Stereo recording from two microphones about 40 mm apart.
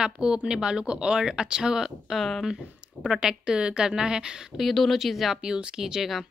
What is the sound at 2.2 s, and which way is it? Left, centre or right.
Speech, centre.